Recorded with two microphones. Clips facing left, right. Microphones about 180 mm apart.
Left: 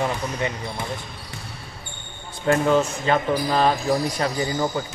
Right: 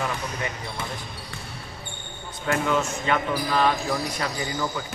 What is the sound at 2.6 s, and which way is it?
Speech, 35° left (ahead or behind).